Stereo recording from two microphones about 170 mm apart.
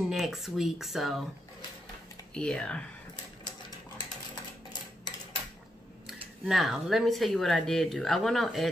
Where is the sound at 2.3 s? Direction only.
5° left (ahead or behind).